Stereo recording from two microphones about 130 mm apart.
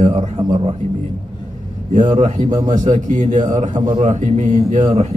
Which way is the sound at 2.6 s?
75° right (ahead or behind).